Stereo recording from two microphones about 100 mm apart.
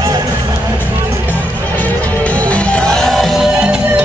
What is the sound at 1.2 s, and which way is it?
Music, 15° left (ahead or behind).